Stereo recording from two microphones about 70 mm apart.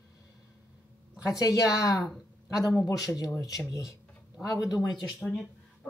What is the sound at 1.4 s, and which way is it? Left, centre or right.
Speech, left.